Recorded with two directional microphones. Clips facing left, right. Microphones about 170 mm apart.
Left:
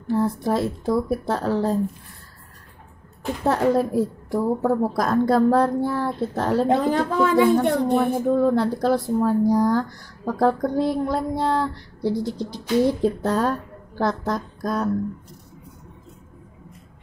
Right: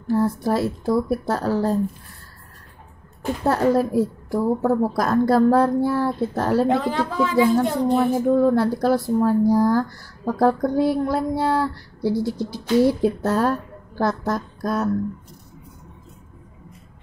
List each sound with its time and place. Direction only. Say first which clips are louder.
0.1 s speech: right 1 dB; centre (ahead or behind)
3.4 s speech: right 1 dB; 5° right (ahead or behind)
6.7 s a woman's voice: left 2 dB; 45° left (ahead or behind)
7.9 s speech: right 2 dB; 5° right (ahead or behind)